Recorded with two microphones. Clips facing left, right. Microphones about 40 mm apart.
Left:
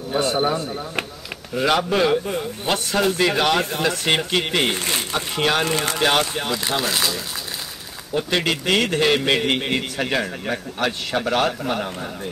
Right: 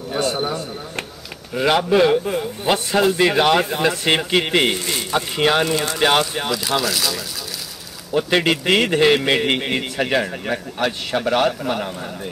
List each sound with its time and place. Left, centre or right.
0.2 s speech: centre
1.5 s a man's voice: centre
5.7 s speech: left
6.0 s a man's voice: centre
6.8 s speech: left
8.1 s a man's voice: centre